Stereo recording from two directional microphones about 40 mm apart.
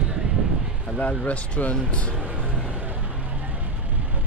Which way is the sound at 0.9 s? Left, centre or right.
Left.